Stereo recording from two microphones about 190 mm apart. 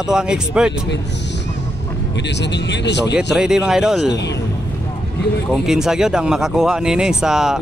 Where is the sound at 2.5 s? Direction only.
65° left (ahead or behind).